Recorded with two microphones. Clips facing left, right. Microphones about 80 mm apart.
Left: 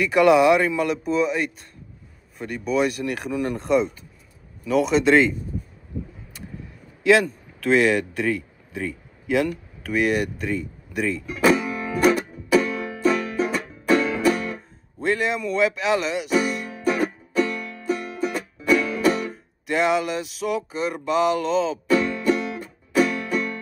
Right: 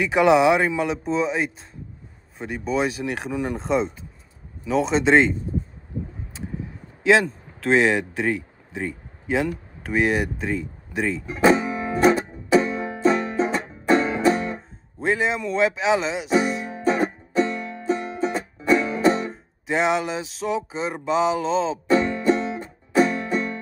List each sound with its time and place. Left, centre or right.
0.0 s a sound: centre
7.1 s a man's voice: centre
11.2 s music: right
15.0 s speech: centre
16.7 s music: right
19.3 s a sound: centre
21.8 s music: right